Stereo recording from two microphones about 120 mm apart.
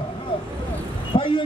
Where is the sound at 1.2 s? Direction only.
45° left (ahead or behind).